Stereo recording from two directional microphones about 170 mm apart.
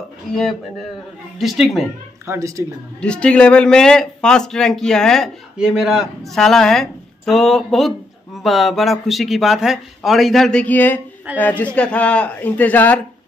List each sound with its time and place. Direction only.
0.3 s speech: centre (ahead or behind)
2.2 s a woman's voice: 15° right (ahead or behind)
3.0 s a man's voice: 5° left (ahead or behind)